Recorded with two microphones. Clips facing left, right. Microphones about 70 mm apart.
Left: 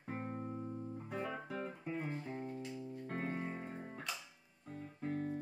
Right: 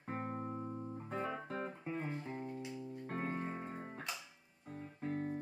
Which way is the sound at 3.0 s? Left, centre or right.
Right.